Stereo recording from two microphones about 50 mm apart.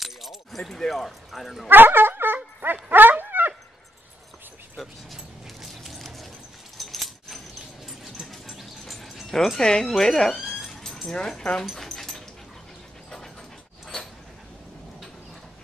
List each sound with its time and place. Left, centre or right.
0.0 s keys jangling: centre
0.6 s speech: centre
1.7 s dog: right
4.7 s a sound: centre
6.8 s keys jangling: centre
8.0 s dog: centre
9.8 s speech: centre
10.4 s a sound: centre
10.7 s a sound: centre
11.1 s speech: centre
11.6 s dog: centre